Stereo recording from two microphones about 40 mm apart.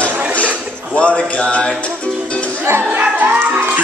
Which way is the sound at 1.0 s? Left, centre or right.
Left.